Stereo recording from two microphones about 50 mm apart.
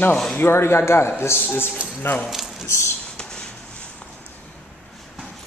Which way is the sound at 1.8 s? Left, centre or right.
Right.